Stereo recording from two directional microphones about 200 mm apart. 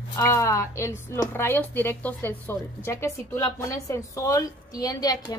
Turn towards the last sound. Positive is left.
turn(degrees=20)  # may be behind; listen again after turning